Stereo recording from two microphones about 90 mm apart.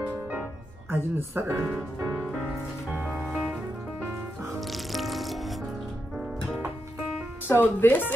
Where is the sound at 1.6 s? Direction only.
10° right (ahead or behind).